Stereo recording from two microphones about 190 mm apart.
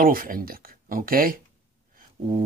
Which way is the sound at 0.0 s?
50° right (ahead or behind).